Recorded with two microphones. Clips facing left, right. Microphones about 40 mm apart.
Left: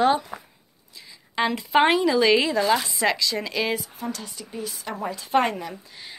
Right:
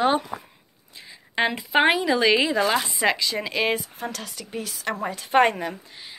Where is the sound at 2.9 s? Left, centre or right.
Right.